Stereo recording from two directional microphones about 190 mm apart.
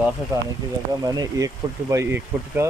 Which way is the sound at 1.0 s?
20° right (ahead or behind).